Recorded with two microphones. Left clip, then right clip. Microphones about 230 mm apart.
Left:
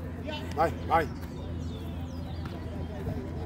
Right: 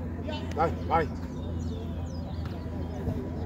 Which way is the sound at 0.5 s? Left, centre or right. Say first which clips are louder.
Left 1 dB; left.